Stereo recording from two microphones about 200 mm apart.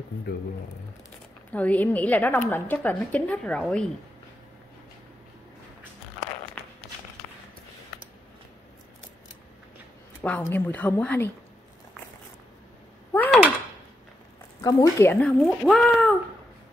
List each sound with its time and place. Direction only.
1.5 s a woman's voice: 5° left (ahead or behind)
6.6 s walk: 5° left (ahead or behind)
7.2 s a sound: 10° left (ahead or behind)
10.2 s a woman's voice: 10° left (ahead or behind)
13.1 s a sound: 10° left (ahead or behind)
14.6 s a woman's voice: 15° left (ahead or behind)
15.1 s speech: 5° left (ahead or behind)